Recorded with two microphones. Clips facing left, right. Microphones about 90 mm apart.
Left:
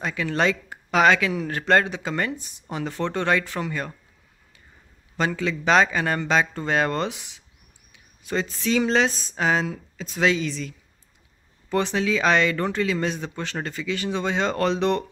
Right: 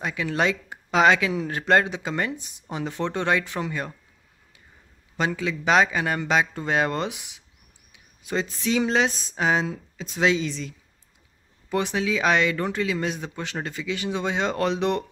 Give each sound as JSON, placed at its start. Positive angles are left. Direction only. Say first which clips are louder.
{"t": 0.0, "sound": "speech", "louder": "left 1 dB", "side_deg": -15}
{"t": 5.1, "sound": "speech", "louder": "left 1 dB", "side_deg": -15}
{"t": 11.7, "sound": "speech", "louder": "left 2 dB", "side_deg": -10}